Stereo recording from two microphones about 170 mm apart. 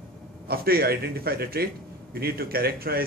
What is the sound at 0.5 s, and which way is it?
A man's voice, 65° right (ahead or behind).